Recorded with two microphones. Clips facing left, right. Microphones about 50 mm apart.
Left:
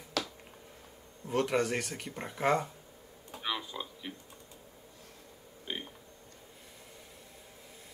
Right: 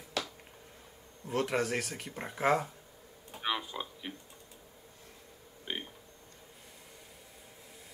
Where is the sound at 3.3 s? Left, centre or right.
Centre.